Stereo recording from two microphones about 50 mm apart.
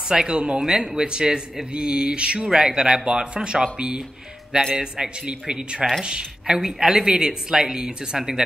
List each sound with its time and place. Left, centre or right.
0.1 s a woman's voice: centre